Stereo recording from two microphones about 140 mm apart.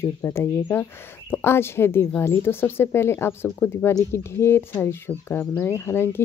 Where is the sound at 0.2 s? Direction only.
20° left (ahead or behind).